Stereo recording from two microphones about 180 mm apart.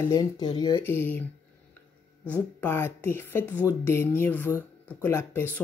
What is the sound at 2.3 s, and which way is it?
Speech, 15° left (ahead or behind).